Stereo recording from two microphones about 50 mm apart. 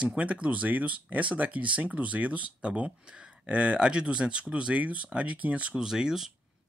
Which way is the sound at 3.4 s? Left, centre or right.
Right.